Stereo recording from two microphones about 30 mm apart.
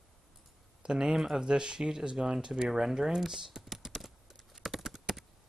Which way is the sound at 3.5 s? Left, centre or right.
Centre.